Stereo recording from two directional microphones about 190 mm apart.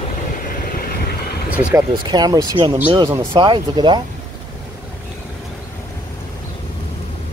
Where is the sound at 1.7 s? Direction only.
20° right (ahead or behind).